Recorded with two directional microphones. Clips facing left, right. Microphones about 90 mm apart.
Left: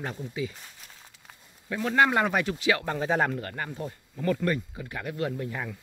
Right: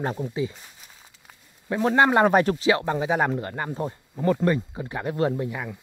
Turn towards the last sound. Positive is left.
turn(degrees=-10)  # may be behind; listen again after turning